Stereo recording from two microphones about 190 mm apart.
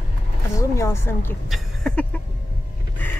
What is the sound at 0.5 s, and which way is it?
Speech, 15° left (ahead or behind).